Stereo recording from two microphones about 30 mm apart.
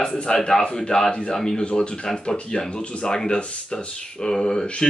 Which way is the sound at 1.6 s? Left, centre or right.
Left.